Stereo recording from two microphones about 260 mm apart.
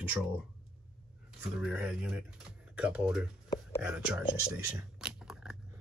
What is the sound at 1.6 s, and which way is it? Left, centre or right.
Speech, centre.